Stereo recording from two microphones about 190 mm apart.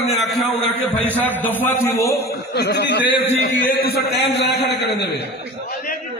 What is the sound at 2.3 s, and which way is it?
Speech, 60° left (ahead or behind).